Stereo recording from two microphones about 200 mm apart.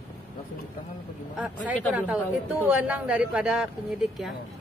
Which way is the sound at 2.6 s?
5° right (ahead or behind).